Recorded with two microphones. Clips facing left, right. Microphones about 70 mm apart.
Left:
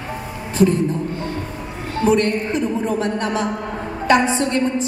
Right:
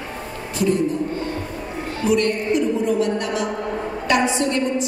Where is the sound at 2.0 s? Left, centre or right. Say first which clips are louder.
Left 2 dB; left.